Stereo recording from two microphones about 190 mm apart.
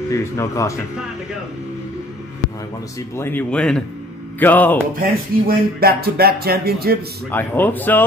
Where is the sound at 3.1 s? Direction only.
10° left (ahead or behind).